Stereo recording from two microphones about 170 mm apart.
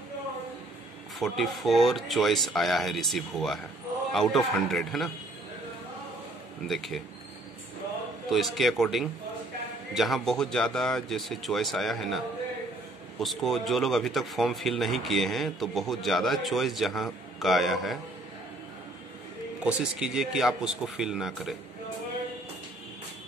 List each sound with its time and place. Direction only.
1.2 s speech: centre (ahead or behind)
6.7 s speech: centre (ahead or behind)
8.3 s speech: centre (ahead or behind)
13.2 s speech: centre (ahead or behind)
19.6 s speech: 5° right (ahead or behind)